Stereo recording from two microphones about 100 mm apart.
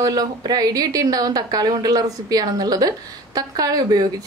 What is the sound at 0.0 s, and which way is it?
Speech, 40° right (ahead or behind).